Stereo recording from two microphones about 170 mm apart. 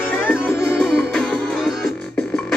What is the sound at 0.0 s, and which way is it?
Music, 10° left (ahead or behind).